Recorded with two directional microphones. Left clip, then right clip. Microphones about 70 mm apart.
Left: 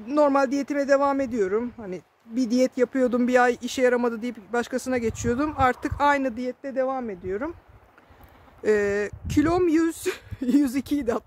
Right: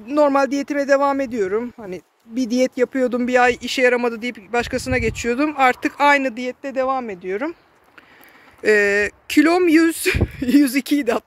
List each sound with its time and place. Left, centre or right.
0.1 s speech: centre
2.3 s speech: centre
3.3 s speech: left; by 7.4 s centre
8.6 s speech: centre